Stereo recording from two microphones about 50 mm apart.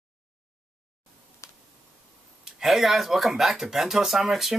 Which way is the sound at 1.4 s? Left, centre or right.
Left.